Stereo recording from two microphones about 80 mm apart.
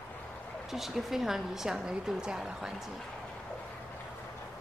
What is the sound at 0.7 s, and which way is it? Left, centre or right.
A woman's voice, centre.